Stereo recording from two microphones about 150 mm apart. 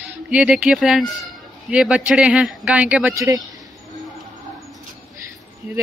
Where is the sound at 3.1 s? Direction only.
20° right (ahead or behind).